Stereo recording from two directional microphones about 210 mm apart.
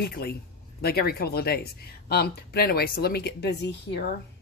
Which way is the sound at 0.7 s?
50° left (ahead or behind).